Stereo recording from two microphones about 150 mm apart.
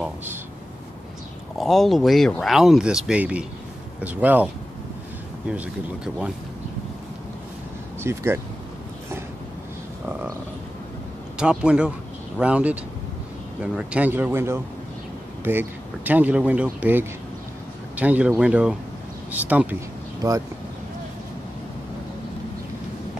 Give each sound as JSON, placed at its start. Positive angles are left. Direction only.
{"t": 0.0, "sound": "speech", "side_deg": -15}
{"t": 1.6, "sound": "speech", "side_deg": 0}
{"t": 8.0, "sound": "speech", "side_deg": -15}
{"t": 11.3, "sound": "speech", "side_deg": -5}